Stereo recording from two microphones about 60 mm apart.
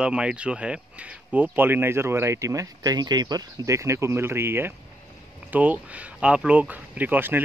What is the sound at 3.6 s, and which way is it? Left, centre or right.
Speech, right.